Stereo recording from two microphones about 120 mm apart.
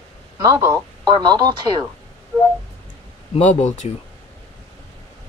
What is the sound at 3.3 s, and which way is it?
Speech, 75° left (ahead or behind).